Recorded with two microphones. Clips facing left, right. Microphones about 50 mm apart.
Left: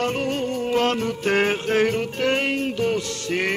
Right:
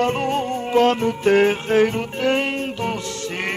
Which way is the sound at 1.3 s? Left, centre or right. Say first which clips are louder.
Right 4 dB; centre.